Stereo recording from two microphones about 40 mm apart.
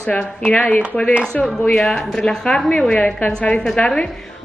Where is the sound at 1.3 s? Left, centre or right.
Left.